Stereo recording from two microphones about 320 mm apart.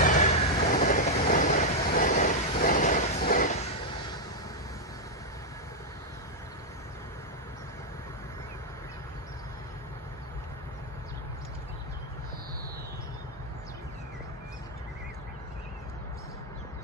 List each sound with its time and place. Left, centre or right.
0.0 s vehicle: left